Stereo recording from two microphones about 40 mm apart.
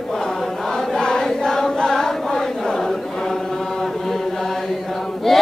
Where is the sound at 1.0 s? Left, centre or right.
Centre.